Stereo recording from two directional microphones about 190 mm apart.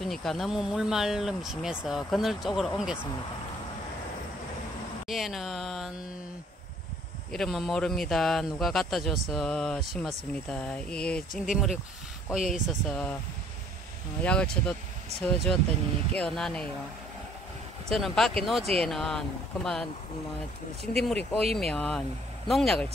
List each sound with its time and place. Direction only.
0.0 s speech: centre (ahead or behind)
5.0 s speech: centre (ahead or behind)
7.3 s speech: centre (ahead or behind)
14.2 s speech: 5° left (ahead or behind)
17.8 s speech: centre (ahead or behind)
21.0 s speech: 5° left (ahead or behind)